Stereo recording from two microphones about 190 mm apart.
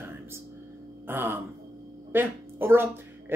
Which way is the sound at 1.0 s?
10° right (ahead or behind).